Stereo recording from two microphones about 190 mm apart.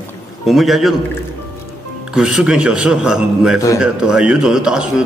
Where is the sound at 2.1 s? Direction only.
5° right (ahead or behind).